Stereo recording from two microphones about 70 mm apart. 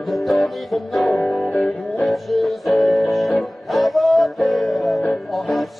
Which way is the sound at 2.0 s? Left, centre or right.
Centre.